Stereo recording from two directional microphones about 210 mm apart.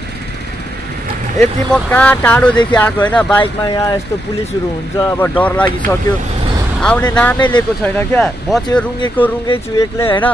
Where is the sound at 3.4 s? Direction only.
15° left (ahead or behind).